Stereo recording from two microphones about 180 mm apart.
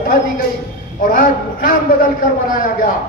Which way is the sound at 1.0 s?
50° left (ahead or behind).